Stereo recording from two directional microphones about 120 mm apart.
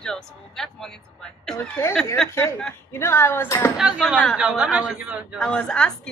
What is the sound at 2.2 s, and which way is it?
Speech, 5° left (ahead or behind).